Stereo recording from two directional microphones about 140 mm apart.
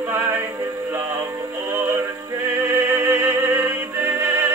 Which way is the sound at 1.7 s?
15° right (ahead or behind).